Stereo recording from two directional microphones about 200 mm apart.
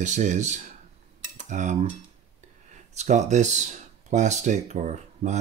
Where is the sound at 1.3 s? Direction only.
35° right (ahead or behind).